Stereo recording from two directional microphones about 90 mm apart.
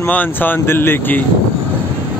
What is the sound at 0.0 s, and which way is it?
Speech, 20° left (ahead or behind).